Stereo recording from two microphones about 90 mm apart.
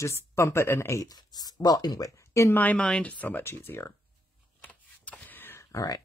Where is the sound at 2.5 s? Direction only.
15° left (ahead or behind).